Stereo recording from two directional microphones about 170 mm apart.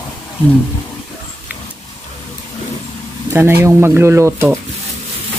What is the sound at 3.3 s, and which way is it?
Speech, 15° right (ahead or behind).